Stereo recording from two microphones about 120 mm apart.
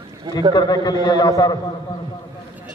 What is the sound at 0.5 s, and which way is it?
A man's voice, 35° left (ahead or behind).